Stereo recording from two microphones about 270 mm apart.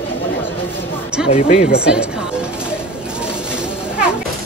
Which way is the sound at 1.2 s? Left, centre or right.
Left.